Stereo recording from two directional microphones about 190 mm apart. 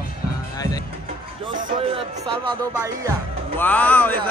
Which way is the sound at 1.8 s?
30° right (ahead or behind).